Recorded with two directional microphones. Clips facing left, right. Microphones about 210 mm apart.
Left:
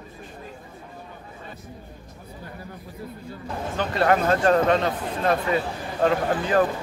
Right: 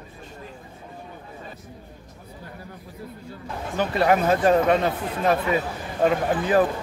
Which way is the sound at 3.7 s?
5° right (ahead or behind).